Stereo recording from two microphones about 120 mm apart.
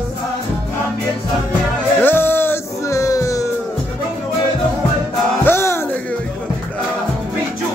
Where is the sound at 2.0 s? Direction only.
15° left (ahead or behind).